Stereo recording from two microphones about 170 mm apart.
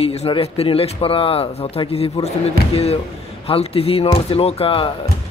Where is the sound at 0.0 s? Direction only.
35° left (ahead or behind).